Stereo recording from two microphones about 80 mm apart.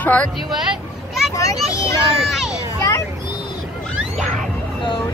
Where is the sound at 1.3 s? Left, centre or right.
Left.